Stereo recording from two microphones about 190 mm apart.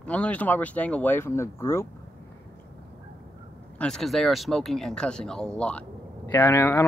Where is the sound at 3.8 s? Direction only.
Centre (ahead or behind).